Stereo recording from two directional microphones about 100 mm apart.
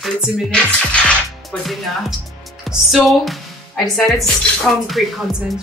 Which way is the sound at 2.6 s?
Centre (ahead or behind).